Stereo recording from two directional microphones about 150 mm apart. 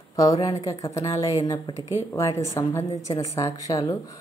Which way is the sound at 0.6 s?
20° left (ahead or behind).